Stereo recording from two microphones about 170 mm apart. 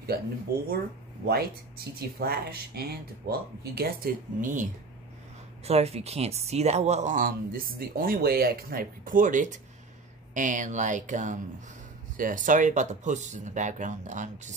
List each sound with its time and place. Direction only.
0.1 s speech: 65° right (ahead or behind); by 4.6 s 50° right (ahead or behind)
5.7 s speech: 35° right (ahead or behind)